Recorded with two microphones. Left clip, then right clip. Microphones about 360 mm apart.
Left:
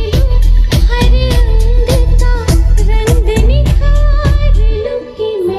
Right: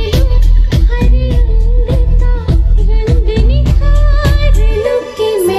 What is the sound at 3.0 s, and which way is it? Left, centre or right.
Music, left.